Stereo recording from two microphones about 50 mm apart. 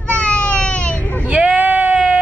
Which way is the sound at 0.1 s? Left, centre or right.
Left.